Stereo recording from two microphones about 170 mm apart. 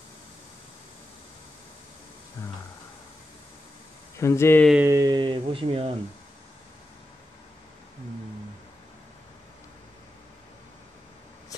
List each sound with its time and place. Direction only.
2.4 s a sound: 20° left (ahead or behind)
4.2 s speech: 15° left (ahead or behind)
4.8 s speech: 20° right (ahead or behind)